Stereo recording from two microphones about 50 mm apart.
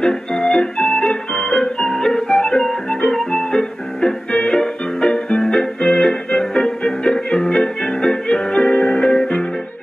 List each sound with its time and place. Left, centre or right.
0.0 s organ: centre
3.3 s music: centre